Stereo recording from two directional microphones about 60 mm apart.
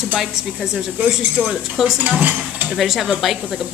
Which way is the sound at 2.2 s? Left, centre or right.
Right.